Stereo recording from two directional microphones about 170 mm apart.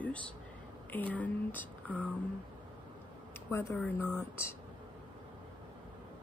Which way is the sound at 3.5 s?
15° left (ahead or behind).